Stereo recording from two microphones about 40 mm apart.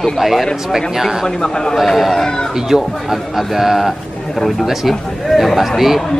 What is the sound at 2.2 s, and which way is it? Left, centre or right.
Speech, centre.